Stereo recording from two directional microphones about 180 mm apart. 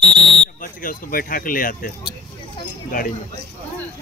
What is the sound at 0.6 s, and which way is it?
Speech, 50° left (ahead or behind).